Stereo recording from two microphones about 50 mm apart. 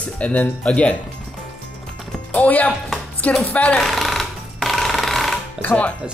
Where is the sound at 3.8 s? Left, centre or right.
Centre.